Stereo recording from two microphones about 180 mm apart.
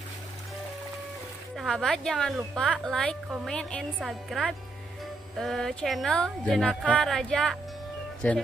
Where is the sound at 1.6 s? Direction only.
Centre (ahead or behind).